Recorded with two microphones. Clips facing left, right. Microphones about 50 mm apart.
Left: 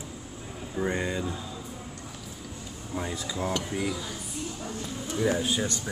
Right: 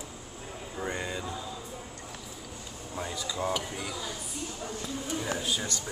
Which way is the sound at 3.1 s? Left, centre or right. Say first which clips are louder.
Left 1 dB; centre.